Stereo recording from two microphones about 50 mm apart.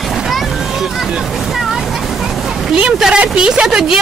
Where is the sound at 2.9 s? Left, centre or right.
Centre.